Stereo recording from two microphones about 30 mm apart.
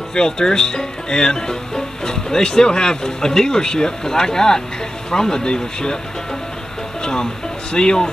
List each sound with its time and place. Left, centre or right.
0.1 s speech: left
7.7 s speech: left